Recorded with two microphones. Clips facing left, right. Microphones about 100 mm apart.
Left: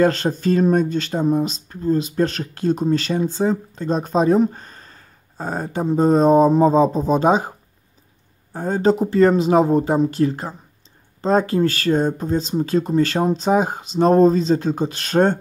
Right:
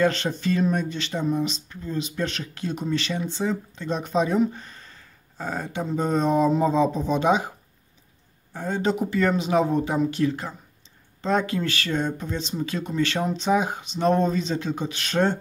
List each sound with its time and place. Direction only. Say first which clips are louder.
0.0 s speech: left 5 dB; 40° left (ahead or behind)
8.5 s speech: left 7 dB; 40° left (ahead or behind)